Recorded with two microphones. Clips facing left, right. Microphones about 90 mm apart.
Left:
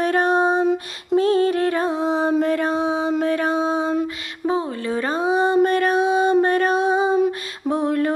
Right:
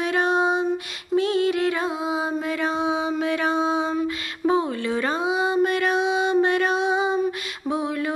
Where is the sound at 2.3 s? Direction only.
50° left (ahead or behind).